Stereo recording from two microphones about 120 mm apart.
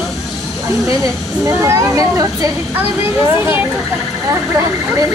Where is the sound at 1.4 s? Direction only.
25° right (ahead or behind).